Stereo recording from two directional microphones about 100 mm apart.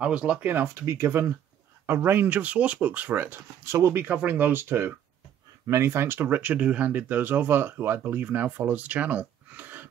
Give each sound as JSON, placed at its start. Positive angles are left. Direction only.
{"t": 0.0, "sound": "speech", "side_deg": -10}
{"t": 0.7, "sound": "speech", "side_deg": -30}